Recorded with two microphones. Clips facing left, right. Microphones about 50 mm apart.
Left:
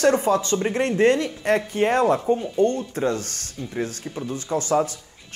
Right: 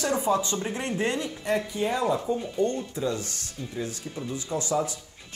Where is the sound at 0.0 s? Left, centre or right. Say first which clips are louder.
Left 6 dB; left.